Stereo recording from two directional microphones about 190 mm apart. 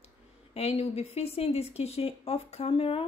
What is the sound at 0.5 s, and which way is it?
A woman's voice, 35° left (ahead or behind).